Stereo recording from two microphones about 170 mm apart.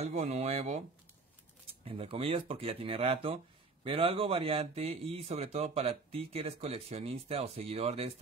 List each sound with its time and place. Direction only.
0.0 s speech: 40° right (ahead or behind)
1.9 s speech: 35° right (ahead or behind)